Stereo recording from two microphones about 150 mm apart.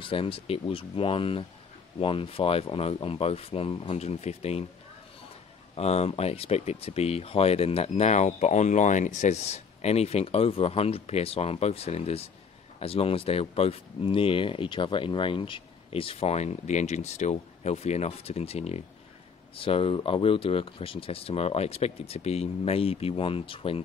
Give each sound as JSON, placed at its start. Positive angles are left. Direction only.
{"t": 0.0, "sound": "speech", "side_deg": 35}
{"t": 5.8, "sound": "speech", "side_deg": 45}